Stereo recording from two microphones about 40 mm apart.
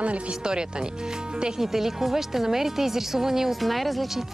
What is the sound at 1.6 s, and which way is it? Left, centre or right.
Speech, centre.